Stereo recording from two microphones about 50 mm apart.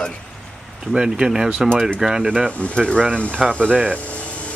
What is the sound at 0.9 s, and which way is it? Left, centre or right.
Speech, centre.